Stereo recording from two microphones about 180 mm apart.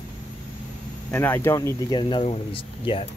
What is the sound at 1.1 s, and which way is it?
Speech, 10° left (ahead or behind).